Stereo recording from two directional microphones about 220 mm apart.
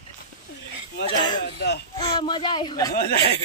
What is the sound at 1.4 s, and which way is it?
Speech, 50° left (ahead or behind).